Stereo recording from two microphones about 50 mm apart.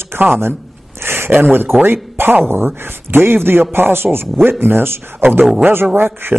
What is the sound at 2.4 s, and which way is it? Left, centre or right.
Speech, right.